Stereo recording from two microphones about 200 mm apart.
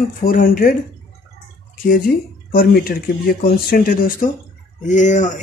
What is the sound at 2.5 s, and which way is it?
Speech, 45° left (ahead or behind).